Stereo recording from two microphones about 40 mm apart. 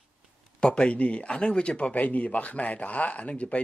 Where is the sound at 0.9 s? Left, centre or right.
Left.